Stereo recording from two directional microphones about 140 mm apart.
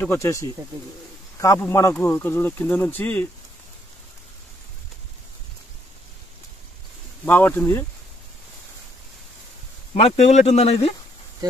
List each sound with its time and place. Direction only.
0.0 s speech: 15° left (ahead or behind)
7.2 s speech: 15° left (ahead or behind)
9.9 s speech: 45° left (ahead or behind)